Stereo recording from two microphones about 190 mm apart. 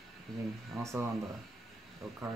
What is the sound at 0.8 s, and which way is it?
Speech, 15° right (ahead or behind).